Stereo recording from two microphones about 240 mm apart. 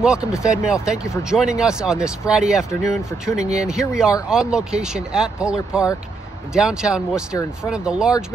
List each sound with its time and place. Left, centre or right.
0.0 s speech: centre